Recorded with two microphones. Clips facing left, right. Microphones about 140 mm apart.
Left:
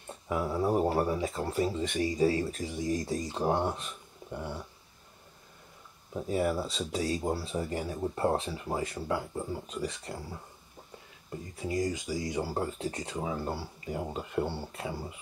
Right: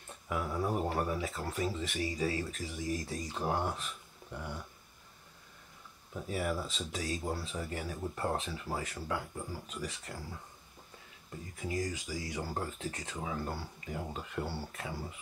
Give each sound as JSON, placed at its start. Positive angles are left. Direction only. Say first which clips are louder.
{"t": 0.3, "sound": "speech", "louder": "left 5 dB", "side_deg": 25}
{"t": 6.1, "sound": "speech", "louder": "left 6 dB", "side_deg": 35}
{"t": 9.0, "sound": "speech", "louder": "left 5 dB", "side_deg": 20}
{"t": 9.7, "sound": "speech", "louder": "left 6 dB", "side_deg": 35}
{"t": 11.5, "sound": "speech", "louder": "left 5 dB", "side_deg": 30}
{"t": 12.4, "sound": "speech", "louder": "left 5 dB", "side_deg": 10}
{"t": 12.7, "sound": "speech", "louder": "left 6 dB", "side_deg": 35}